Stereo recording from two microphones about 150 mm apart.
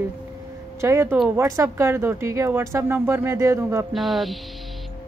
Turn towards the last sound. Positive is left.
turn(degrees=0)  # may be behind; listen again after turning